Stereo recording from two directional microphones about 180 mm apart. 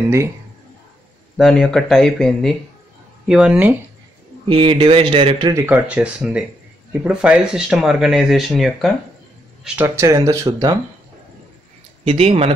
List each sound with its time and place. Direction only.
1.3 s speech: centre (ahead or behind)
4.5 s speech: 30° right (ahead or behind)
5.5 s speech: 15° right (ahead or behind)
9.8 s speech: 15° right (ahead or behind)
12.0 s speech: 35° right (ahead or behind)